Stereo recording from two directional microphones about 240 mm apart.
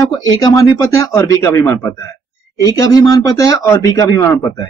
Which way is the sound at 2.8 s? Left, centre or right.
Centre.